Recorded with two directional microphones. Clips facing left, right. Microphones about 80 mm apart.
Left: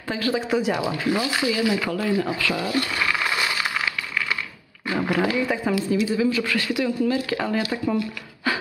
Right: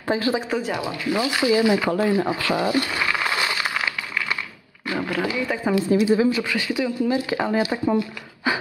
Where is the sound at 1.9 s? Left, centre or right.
Right.